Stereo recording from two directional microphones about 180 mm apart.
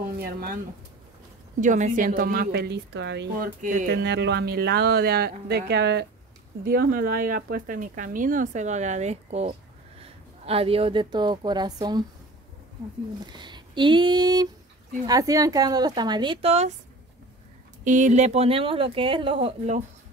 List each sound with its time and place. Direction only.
0.2 s speech: 55° right (ahead or behind)
1.6 s speech: 45° right (ahead or behind); by 3.3 s 75° right (ahead or behind)
3.3 s speech: 50° right (ahead or behind); by 6.0 s 70° right (ahead or behind)
6.6 s speech: 55° right (ahead or behind); by 12.0 s 20° right (ahead or behind)
13.2 s a woman's voice: 25° right (ahead or behind)
17.8 s speech: 45° right (ahead or behind)